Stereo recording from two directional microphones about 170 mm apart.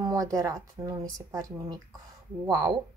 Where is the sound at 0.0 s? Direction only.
20° right (ahead or behind).